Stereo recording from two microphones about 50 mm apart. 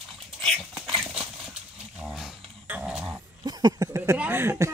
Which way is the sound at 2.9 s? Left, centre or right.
Centre.